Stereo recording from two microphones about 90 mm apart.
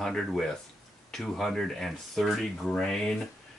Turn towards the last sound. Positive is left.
turn(degrees=5)  # may be behind; listen again after turning